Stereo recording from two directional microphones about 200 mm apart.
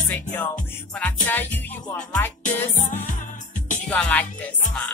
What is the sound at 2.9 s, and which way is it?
Music, 40° left (ahead or behind).